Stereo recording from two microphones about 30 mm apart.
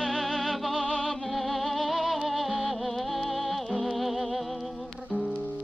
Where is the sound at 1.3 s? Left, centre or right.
Centre.